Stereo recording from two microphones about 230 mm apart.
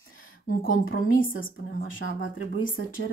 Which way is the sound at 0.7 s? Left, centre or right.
Left.